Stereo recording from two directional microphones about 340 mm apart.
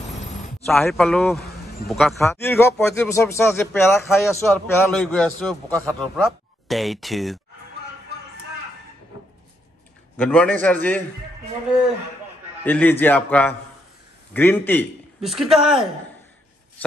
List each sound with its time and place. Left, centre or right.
0.1 s a sound: centre
0.7 s a man's voice: centre
10.1 s a man's voice: centre
12.6 s a man's voice: centre